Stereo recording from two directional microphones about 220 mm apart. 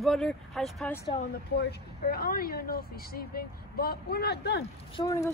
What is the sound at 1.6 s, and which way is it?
Speech, 45° left (ahead or behind).